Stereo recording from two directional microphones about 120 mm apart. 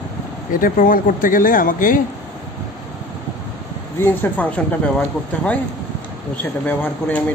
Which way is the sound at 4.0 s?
15° left (ahead or behind).